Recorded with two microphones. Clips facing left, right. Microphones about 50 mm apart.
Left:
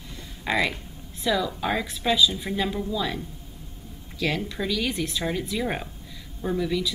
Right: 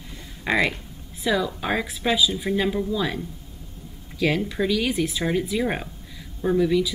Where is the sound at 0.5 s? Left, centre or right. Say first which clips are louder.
Right 3 dB; centre.